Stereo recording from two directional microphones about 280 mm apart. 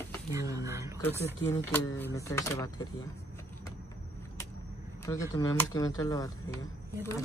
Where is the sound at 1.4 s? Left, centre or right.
Centre.